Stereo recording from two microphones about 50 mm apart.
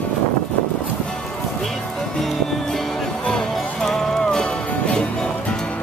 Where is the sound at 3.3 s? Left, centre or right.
Centre.